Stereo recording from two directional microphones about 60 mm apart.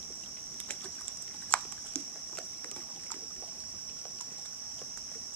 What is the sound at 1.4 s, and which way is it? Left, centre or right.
Dog, centre.